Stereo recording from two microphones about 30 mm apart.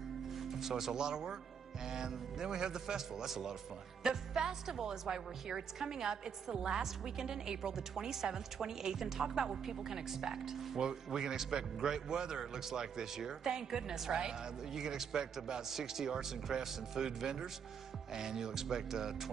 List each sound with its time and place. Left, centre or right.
0.3 s music: centre
0.9 s a man's voice: right
10.8 s a man's voice: right